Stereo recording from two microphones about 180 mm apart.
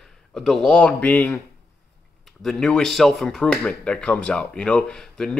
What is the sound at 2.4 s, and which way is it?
Speech, centre (ahead or behind).